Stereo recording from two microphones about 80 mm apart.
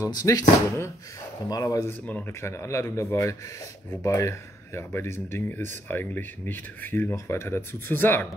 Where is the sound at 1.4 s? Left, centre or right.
Left.